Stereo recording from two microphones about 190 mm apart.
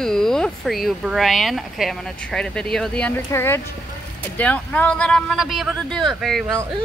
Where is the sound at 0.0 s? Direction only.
Centre (ahead or behind).